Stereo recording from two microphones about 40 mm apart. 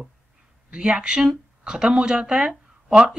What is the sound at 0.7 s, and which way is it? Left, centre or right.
A woman's voice, right.